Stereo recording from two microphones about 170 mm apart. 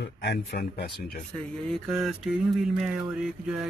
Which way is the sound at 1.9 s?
Centre (ahead or behind).